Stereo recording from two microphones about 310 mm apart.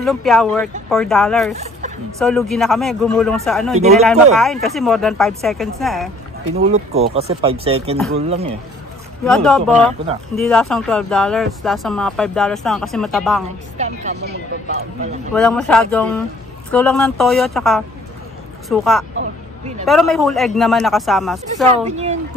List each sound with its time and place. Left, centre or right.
0.0 s speech: centre
3.7 s speech: right
4.0 s speech: centre
6.5 s speech: right
9.2 s speech: centre
13.7 s speech: right
15.3 s speech: centre
21.6 s speech: right